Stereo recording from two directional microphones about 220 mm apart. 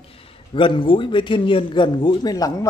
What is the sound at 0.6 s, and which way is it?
A man's voice, 20° left (ahead or behind).